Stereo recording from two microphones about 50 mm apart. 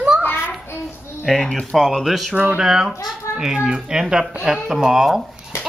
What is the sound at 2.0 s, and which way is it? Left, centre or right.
Speech, centre.